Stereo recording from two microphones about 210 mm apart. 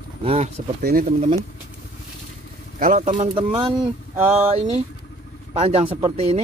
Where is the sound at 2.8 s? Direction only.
40° right (ahead or behind).